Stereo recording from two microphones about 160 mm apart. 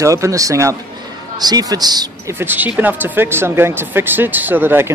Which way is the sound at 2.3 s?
10° right (ahead or behind).